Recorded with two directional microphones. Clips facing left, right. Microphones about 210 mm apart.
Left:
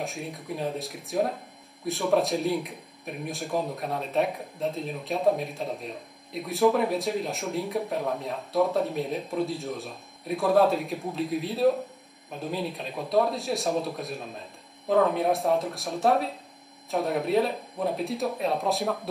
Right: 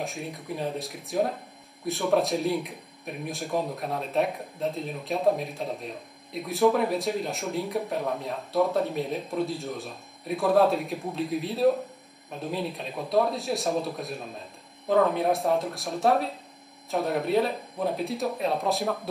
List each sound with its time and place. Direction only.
0.0 s speech: centre (ahead or behind)